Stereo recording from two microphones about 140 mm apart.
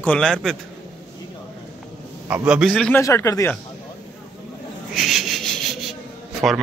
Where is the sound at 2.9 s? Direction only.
20° left (ahead or behind).